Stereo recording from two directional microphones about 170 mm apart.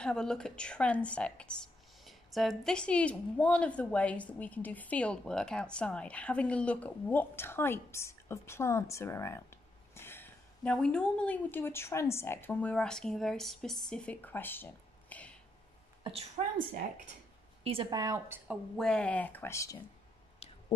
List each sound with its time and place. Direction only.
0.0 s a woman's voice: 5° left (ahead or behind)
16.0 s a woman's voice: 35° right (ahead or behind)
17.6 s a woman's voice: 30° right (ahead or behind)
18.5 s a woman's voice: 5° left (ahead or behind)
20.4 s a sound: 35° left (ahead or behind)